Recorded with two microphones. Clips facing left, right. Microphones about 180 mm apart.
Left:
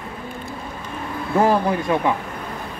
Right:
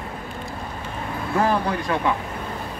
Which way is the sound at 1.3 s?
20° left (ahead or behind).